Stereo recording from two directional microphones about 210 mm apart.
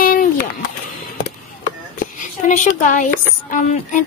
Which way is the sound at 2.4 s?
35° left (ahead or behind).